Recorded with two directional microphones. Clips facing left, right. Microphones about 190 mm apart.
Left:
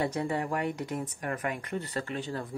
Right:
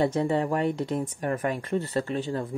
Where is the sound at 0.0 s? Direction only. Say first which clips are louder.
Right 6 dB; 25° right (ahead or behind).